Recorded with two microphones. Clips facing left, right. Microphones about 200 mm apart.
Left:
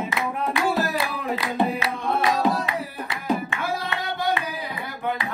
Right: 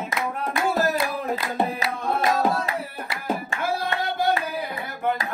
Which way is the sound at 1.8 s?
Centre (ahead or behind).